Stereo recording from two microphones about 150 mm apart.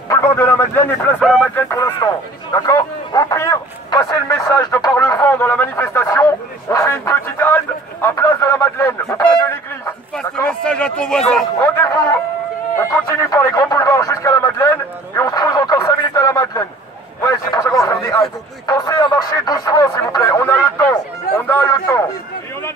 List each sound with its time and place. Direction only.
0.1 s a man's voice: 15° left (ahead or behind)
10.1 s speech: 5° left (ahead or behind)
11.6 s music: 15° left (ahead or behind)
17.3 s a sound: 25° left (ahead or behind)
18.7 s speech: 25° left (ahead or behind)